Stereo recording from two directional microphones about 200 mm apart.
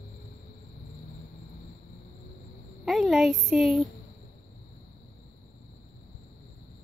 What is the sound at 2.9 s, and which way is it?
Speech, centre (ahead or behind).